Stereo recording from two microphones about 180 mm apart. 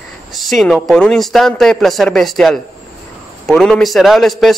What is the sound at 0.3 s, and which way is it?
A man's voice, centre (ahead or behind).